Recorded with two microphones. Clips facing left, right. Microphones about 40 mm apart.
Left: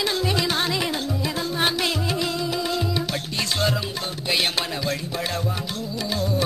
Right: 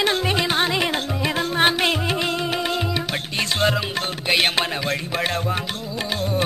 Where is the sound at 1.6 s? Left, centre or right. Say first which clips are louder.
Right 5 dB; right.